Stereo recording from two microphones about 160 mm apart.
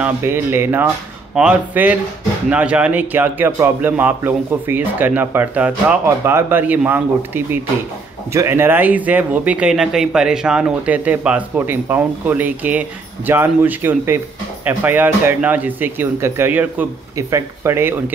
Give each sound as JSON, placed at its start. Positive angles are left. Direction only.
{"t": 0.0, "sound": "a man's voice", "side_deg": -15}